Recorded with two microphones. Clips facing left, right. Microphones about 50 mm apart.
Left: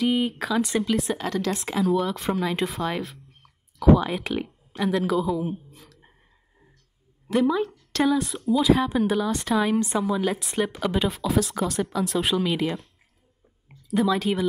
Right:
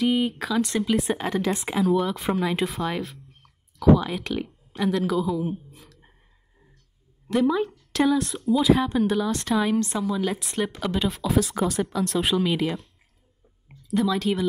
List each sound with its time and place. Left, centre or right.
0.0 s a woman's voice: centre
1.1 s speech: centre
1.5 s a woman's voice: centre
3.9 s speech: centre
7.2 s a woman's voice: centre